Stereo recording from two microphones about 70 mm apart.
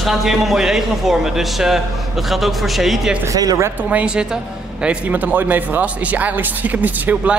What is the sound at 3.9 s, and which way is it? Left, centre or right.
A man's voice, centre.